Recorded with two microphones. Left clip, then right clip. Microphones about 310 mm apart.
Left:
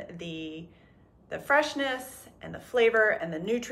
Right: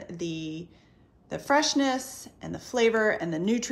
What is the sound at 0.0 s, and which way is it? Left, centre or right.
A woman's voice, centre.